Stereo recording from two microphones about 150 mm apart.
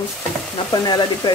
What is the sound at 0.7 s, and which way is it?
Speech, 25° left (ahead or behind).